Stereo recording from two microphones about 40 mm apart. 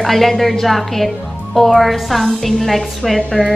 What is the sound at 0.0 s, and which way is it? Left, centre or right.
Speech, centre.